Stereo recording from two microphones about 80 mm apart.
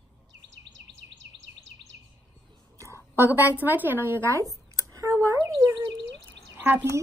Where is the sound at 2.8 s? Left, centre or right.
Right.